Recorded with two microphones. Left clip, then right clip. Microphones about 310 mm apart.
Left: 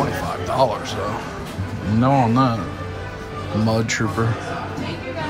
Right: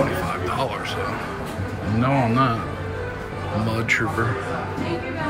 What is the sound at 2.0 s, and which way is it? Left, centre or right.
Speech, centre.